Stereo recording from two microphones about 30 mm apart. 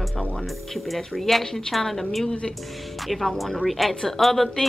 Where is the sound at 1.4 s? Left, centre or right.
Centre.